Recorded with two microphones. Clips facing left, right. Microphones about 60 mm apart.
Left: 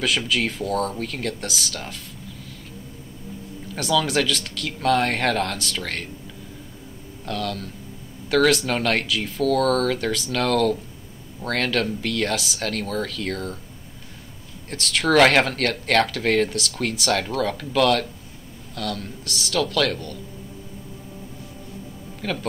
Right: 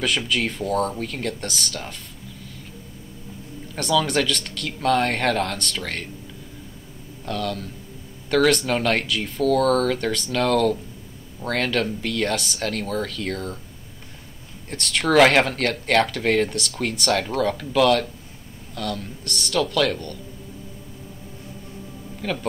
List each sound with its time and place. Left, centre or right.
0.0 s speech: centre
3.7 s speech: centre
7.2 s speech: centre
14.7 s speech: centre
22.2 s speech: centre